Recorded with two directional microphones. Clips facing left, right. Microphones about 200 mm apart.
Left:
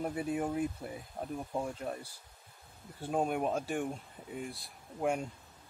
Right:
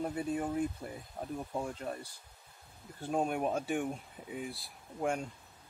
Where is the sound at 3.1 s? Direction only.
Centre (ahead or behind).